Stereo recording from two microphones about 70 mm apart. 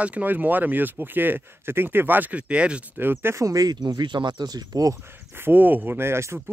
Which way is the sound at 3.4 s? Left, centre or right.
Right.